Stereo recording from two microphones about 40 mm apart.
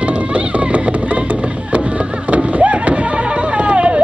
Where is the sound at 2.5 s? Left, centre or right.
Right.